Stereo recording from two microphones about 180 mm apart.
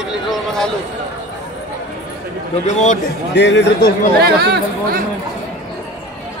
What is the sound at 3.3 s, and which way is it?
Speech, 75° left (ahead or behind).